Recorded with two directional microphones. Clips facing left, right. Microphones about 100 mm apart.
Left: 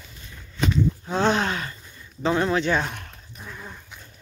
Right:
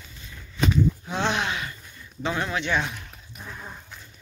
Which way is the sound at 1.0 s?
40° left (ahead or behind).